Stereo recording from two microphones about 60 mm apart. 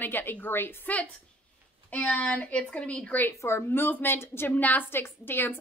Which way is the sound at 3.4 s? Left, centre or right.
Left.